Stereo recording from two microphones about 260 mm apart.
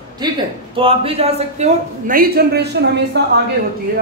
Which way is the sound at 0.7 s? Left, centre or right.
Right.